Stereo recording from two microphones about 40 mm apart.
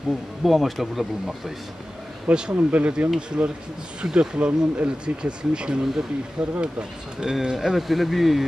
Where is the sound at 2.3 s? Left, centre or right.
Right.